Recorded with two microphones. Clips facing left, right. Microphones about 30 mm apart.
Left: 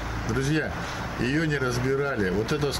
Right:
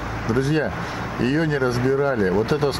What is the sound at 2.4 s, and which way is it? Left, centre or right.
Speech, right.